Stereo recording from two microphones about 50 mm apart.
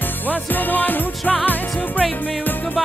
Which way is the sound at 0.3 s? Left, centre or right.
Left.